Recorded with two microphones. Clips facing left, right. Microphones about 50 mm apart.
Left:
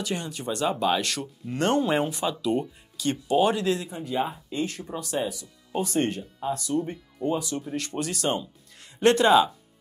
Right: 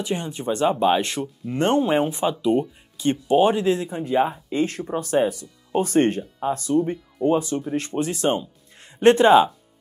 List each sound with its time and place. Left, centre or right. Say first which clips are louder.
0.0 s speech: right 4 dB; right
4.6 s speech: right 7 dB; right